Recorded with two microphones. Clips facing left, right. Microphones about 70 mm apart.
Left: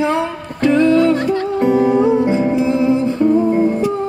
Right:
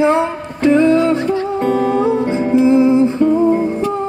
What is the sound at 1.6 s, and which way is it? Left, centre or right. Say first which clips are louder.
Music: left 2 dB; centre.